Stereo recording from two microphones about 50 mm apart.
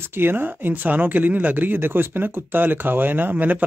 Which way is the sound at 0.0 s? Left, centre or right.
Right.